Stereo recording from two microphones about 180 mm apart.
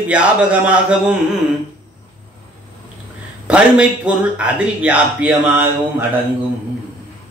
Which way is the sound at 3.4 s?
5° right (ahead or behind).